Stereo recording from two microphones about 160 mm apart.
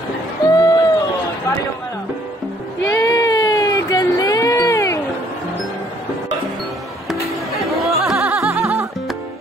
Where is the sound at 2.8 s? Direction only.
20° left (ahead or behind).